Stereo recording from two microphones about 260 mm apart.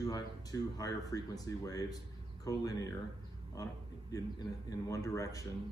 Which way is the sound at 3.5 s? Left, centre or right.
Centre.